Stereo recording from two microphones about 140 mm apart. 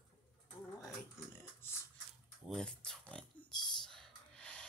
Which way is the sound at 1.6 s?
15° left (ahead or behind).